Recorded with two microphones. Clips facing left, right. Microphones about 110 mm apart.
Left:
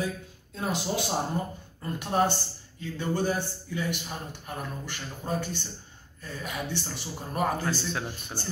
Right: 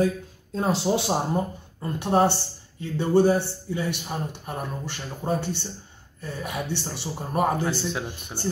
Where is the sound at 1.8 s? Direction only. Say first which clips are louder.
Right 5 dB; 25° right (ahead or behind).